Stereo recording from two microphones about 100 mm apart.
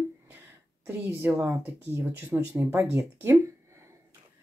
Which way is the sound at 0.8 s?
20° right (ahead or behind).